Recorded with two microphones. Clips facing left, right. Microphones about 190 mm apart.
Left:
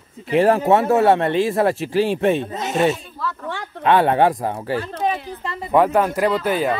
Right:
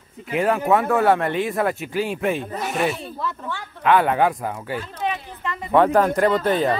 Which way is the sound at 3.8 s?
30° left (ahead or behind).